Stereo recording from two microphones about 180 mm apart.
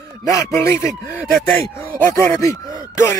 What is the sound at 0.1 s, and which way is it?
Speech, 20° left (ahead or behind).